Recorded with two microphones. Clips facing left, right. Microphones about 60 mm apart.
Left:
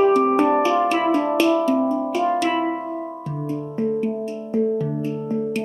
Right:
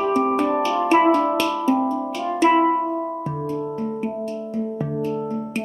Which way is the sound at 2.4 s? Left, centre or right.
Centre.